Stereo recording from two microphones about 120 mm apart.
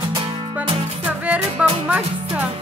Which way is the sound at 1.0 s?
10° right (ahead or behind).